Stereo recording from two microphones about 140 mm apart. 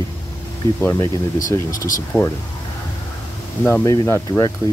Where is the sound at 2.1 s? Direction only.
5° left (ahead or behind).